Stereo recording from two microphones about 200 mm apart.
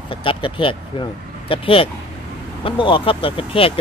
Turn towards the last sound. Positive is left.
turn(degrees=25)  # may be behind; listen again after turning